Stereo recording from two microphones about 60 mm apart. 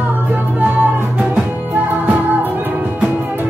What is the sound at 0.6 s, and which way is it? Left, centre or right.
Music, right.